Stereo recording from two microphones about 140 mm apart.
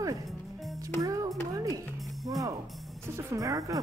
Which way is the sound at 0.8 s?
25° right (ahead or behind).